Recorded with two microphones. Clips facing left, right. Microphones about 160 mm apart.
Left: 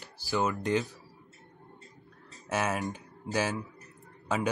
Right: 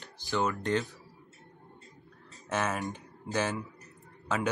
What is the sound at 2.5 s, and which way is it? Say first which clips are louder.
Speech: left 1 dB; 10° left (ahead or behind).